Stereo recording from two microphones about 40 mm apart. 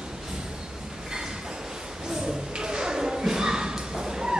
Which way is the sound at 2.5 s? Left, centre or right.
Centre.